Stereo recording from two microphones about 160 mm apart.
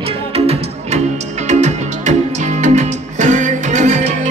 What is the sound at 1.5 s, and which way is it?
Music, 45° right (ahead or behind).